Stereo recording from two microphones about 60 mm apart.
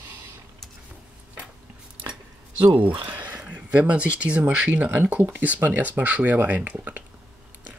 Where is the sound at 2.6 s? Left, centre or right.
Right.